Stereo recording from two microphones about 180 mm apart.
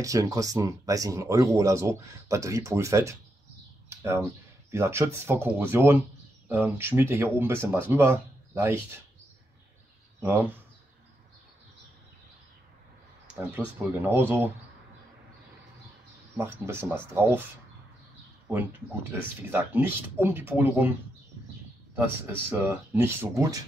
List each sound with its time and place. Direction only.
0.0 s speech: 20° right (ahead or behind)
3.9 s a sound: 15° right (ahead or behind)
4.6 s speech: 15° right (ahead or behind)
10.2 s speech: 10° right (ahead or behind)
13.3 s speech: 10° right (ahead or behind)
16.3 s speech: 15° right (ahead or behind)
18.5 s speech: 10° right (ahead or behind)
21.9 s speech: 10° right (ahead or behind)